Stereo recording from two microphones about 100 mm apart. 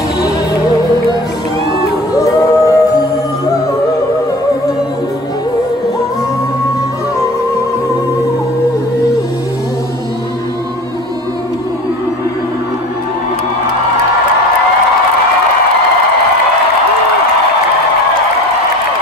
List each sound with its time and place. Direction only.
2.1 s music: 30° left (ahead or behind)